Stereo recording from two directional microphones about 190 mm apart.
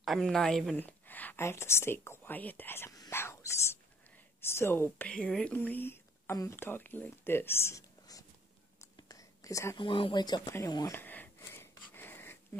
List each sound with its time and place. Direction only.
0.0 s a woman's voice: centre (ahead or behind); by 11.0 s 20° left (ahead or behind)
11.0 s wheeze: 10° left (ahead or behind)